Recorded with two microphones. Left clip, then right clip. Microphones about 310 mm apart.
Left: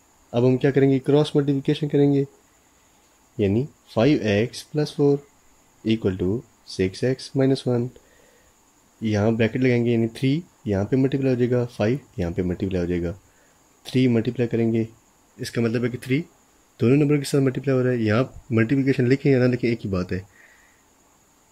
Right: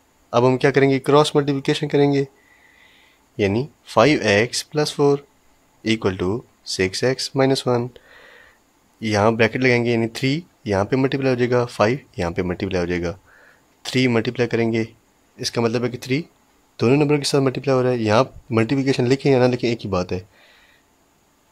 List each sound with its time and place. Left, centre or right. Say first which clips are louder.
0.3 s speech: right 4 dB; centre
3.3 s speech: right 2 dB; centre
6.6 s speech: right 5 dB; centre
9.0 s speech: right 5 dB; centre